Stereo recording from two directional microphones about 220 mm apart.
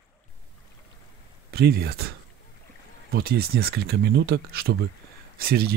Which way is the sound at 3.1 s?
45° right (ahead or behind).